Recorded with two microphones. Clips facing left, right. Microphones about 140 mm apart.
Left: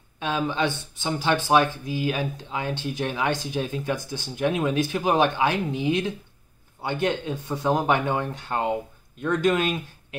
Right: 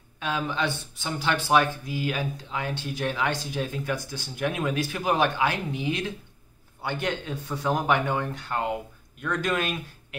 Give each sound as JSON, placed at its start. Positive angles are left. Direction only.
{"t": 0.2, "sound": "speech", "side_deg": 20}